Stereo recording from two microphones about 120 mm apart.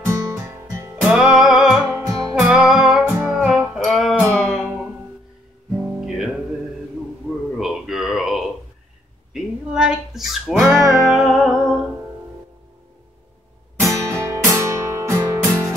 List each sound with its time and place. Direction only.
0.0 s music: 25° right (ahead or behind)
1.1 s music: 5° right (ahead or behind)
1.9 s music: 25° right (ahead or behind)
2.4 s music: 5° right (ahead or behind)
3.1 s music: 15° right (ahead or behind)
3.4 s music: 5° right (ahead or behind)
4.2 s music: 15° left (ahead or behind)
5.8 s guitar: 5° right (ahead or behind)
7.5 s a sound: 5° right (ahead or behind)
9.3 s music: 5° right (ahead or behind)
13.7 s music: 25° right (ahead or behind)